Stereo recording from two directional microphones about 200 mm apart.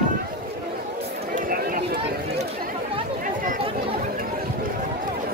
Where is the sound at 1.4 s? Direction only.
45° right (ahead or behind).